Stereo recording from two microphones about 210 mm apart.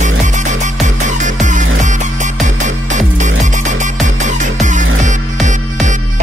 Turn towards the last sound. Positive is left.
turn(degrees=-35)  # may be behind; listen again after turning